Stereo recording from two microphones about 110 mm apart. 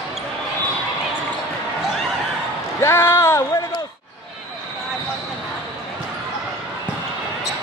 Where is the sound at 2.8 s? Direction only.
25° left (ahead or behind).